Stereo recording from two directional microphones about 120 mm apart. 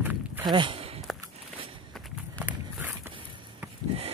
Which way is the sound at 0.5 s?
45° right (ahead or behind).